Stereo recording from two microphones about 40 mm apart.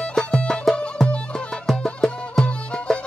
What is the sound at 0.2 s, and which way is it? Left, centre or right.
Music, left.